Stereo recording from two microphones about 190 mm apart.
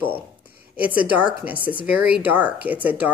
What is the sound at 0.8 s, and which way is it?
Speech, 10° right (ahead or behind).